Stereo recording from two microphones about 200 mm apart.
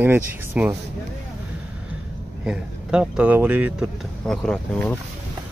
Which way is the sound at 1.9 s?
10° right (ahead or behind).